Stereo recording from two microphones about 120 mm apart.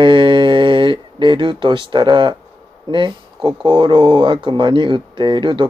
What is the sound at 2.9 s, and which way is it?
Speech, 40° right (ahead or behind).